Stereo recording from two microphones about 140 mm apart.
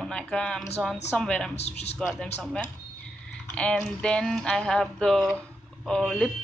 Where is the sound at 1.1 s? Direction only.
5° left (ahead or behind).